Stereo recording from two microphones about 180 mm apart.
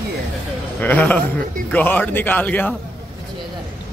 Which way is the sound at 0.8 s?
10° left (ahead or behind).